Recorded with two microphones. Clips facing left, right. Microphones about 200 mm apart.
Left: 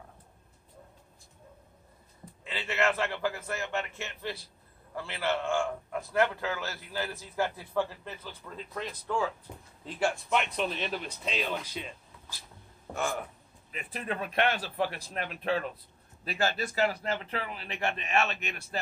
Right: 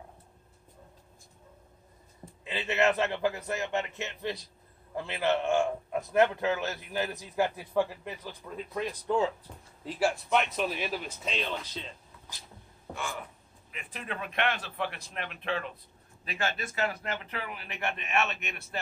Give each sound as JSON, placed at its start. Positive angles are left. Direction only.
{"t": 2.4, "sound": "a man's voice", "side_deg": -20}
{"t": 9.8, "sound": "speech", "side_deg": -5}
{"t": 12.9, "sound": "a man's voice", "side_deg": 45}